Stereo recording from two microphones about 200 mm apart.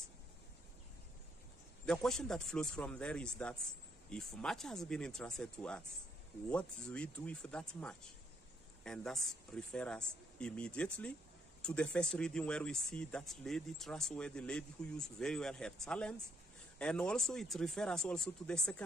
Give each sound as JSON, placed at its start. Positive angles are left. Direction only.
{"t": 1.9, "sound": "speech", "side_deg": 5}